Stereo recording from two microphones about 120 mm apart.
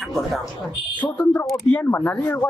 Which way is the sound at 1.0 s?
15° left (ahead or behind).